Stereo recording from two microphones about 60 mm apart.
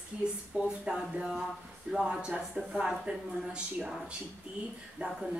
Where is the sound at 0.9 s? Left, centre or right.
Centre.